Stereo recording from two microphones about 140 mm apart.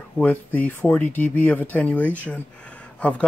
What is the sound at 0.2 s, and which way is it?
Speech, 10° left (ahead or behind).